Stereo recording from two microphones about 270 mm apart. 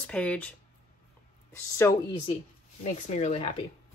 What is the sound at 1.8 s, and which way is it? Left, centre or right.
Speech, centre.